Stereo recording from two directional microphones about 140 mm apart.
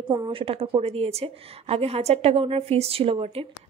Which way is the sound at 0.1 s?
35° right (ahead or behind).